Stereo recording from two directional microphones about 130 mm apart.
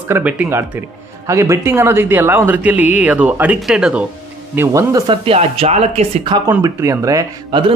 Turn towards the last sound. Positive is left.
turn(degrees=-40)  # may be behind; listen again after turning